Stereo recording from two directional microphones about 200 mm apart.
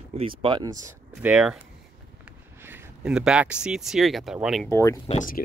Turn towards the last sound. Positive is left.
turn(degrees=40)  # may be behind; listen again after turning